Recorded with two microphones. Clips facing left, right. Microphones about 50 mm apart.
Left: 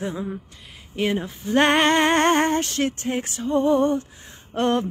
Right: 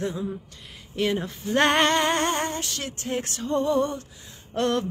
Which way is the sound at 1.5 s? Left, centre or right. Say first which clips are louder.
Left 3 dB; left.